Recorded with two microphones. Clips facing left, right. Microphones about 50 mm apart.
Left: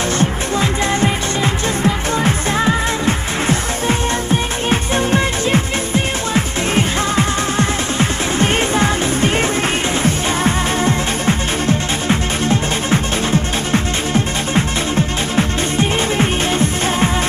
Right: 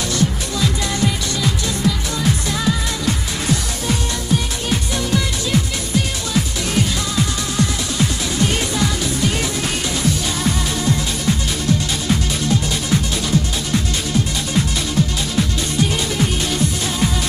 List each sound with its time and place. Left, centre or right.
0.2 s music: left